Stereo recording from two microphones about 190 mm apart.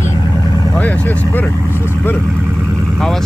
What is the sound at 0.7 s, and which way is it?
Vehicle, 10° left (ahead or behind).